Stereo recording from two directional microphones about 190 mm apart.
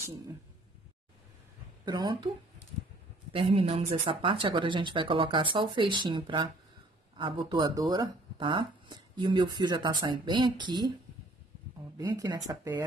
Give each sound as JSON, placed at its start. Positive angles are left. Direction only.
{"t": 1.9, "sound": "speech", "side_deg": -20}
{"t": 3.3, "sound": "speech", "side_deg": -30}
{"t": 12.0, "sound": "speech", "side_deg": -20}